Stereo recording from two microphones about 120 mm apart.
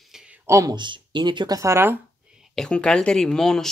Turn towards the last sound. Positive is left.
turn(degrees=5)  # may be behind; listen again after turning